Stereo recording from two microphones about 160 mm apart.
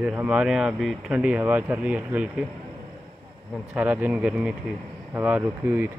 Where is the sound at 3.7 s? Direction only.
10° right (ahead or behind).